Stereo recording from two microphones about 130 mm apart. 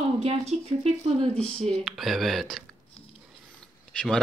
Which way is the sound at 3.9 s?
5° left (ahead or behind).